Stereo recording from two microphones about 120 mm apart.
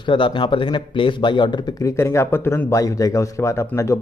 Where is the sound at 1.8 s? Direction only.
25° left (ahead or behind).